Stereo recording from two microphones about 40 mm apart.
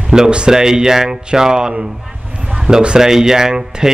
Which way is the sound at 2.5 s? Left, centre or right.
Right.